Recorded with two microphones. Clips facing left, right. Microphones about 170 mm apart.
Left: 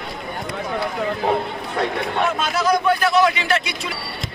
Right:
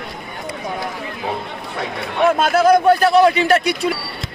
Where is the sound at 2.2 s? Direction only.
50° right (ahead or behind).